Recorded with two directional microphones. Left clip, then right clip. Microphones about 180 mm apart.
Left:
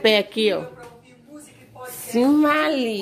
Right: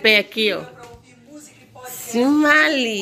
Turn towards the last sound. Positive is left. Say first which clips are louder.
# right 5 dB
turn(degrees=0)  # may be behind; listen again after turning